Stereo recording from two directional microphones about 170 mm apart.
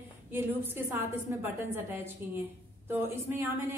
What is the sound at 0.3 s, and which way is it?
A woman's voice, 15° right (ahead or behind).